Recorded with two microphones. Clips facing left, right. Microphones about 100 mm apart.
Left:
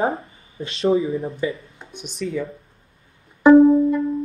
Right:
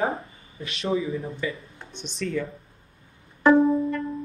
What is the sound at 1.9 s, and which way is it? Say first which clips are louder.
Speech: left 2 dB; 10° left (ahead or behind).